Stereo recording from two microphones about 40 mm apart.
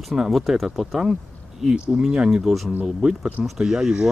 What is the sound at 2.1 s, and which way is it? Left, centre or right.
Speech, centre.